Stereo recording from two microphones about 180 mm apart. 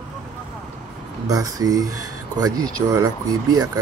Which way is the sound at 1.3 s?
20° right (ahead or behind).